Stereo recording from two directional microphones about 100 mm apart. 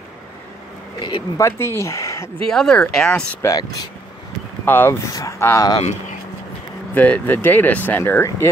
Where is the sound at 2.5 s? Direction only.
5° left (ahead or behind).